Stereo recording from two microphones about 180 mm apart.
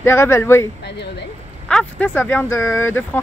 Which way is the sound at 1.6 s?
5° left (ahead or behind).